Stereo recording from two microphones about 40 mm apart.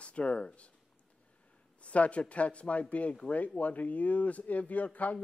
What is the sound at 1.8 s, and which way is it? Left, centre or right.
A man's voice, left.